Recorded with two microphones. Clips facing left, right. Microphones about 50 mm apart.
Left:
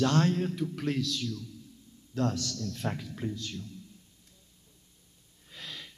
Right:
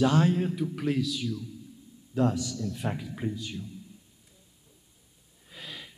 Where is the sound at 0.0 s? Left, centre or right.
Centre.